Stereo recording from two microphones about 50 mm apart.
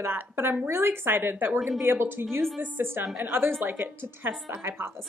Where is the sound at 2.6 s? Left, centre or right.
Right.